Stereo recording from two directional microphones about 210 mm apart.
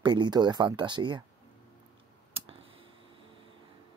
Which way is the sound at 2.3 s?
25° right (ahead or behind).